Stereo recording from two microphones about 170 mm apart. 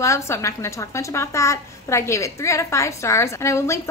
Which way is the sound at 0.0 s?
15° left (ahead or behind).